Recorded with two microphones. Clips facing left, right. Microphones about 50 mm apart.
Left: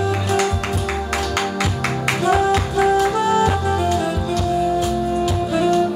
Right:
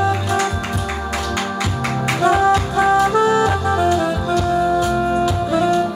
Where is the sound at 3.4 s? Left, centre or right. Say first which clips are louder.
Right 2 dB; right.